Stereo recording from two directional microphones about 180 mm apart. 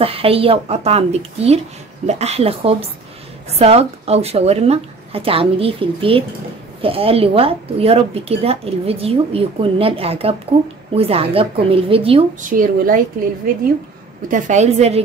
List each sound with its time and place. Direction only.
0.0 s a woman's voice: 30° right (ahead or behind)
12.4 s speech: 50° right (ahead or behind)
14.3 s a woman's voice: 40° right (ahead or behind)